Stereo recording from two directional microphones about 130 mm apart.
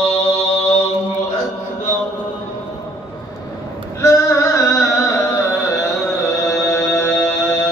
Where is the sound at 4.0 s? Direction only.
25° left (ahead or behind).